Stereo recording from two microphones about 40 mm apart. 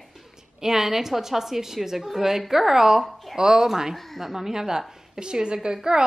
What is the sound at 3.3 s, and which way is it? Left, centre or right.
A woman's voice, centre.